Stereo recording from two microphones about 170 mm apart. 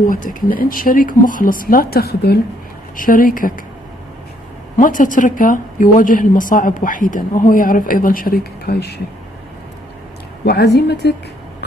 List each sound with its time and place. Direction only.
0.0 s a woman's voice: 50° left (ahead or behind)
4.7 s a woman's voice: 50° left (ahead or behind); by 9.0 s 70° left (ahead or behind)
10.4 s a woman's voice: 70° left (ahead or behind)